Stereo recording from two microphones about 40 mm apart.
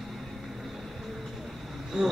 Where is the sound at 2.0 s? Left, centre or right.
Right.